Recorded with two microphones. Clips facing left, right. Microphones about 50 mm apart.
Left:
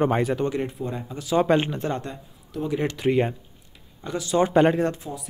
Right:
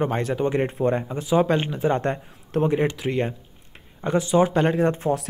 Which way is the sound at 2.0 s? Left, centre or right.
Right.